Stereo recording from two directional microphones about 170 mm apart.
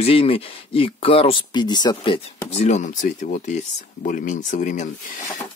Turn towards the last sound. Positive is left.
turn(degrees=50)  # may be behind; listen again after turning